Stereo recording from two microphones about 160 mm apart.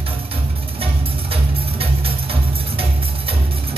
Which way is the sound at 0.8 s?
35° right (ahead or behind).